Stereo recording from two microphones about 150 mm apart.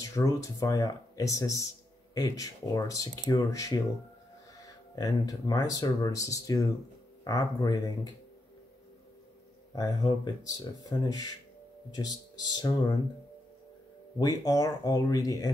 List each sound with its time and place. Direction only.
0.0 s speech: 25° left (ahead or behind)
4.9 s speech: 25° left (ahead or behind)
9.8 s speech: 25° left (ahead or behind)
14.1 s speech: 25° left (ahead or behind)